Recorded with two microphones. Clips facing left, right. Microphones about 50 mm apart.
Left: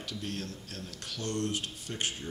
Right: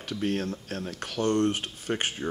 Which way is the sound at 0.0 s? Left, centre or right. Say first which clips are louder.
Right 9 dB; right.